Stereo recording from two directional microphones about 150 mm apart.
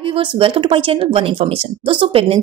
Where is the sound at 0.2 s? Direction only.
35° right (ahead or behind).